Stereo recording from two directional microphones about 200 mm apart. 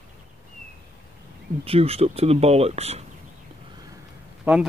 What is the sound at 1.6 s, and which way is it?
Speech, 30° right (ahead or behind).